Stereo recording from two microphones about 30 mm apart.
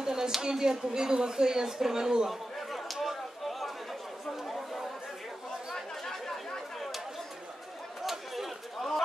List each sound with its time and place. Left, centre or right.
0.0 s a sound: right
0.4 s speech: right
2.7 s chatter: centre
6.0 s chatter: centre
8.0 s chatter: centre
8.7 s bird: centre